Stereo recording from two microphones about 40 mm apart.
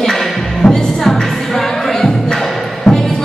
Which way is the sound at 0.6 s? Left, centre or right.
Centre.